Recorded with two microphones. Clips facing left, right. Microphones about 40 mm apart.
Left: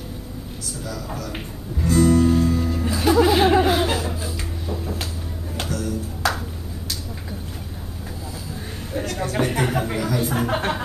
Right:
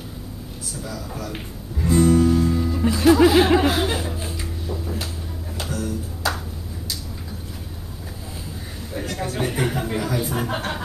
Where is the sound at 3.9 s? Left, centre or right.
Right.